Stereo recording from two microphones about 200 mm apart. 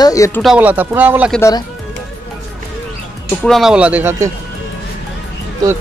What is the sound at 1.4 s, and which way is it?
Speech, 20° left (ahead or behind).